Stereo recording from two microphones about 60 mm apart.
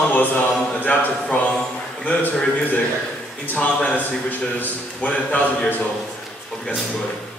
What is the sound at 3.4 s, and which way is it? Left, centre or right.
Speech, left.